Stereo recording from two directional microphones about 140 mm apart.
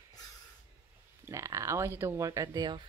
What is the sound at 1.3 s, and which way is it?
Speech, 20° right (ahead or behind).